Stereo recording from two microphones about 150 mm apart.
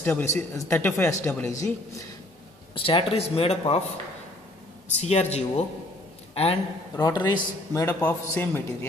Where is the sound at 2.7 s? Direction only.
35° left (ahead or behind).